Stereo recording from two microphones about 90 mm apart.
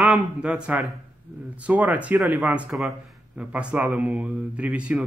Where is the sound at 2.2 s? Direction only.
5° right (ahead or behind).